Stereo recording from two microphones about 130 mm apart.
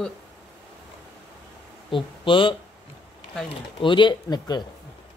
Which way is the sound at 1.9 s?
40° left (ahead or behind).